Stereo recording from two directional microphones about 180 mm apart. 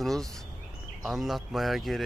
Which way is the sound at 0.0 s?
Centre (ahead or behind).